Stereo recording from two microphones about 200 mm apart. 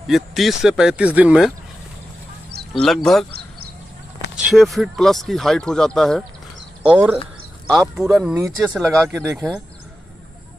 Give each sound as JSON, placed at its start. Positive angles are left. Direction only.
{"t": 0.0, "sound": "speech", "side_deg": 0}
{"t": 2.7, "sound": "speech", "side_deg": 0}
{"t": 4.4, "sound": "speech", "side_deg": 0}
{"t": 8.4, "sound": "speech", "side_deg": -15}